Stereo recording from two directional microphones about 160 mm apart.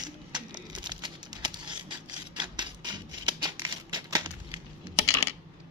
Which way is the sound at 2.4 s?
30° right (ahead or behind).